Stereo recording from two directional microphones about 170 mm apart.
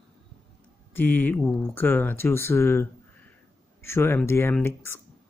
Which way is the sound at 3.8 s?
15° left (ahead or behind).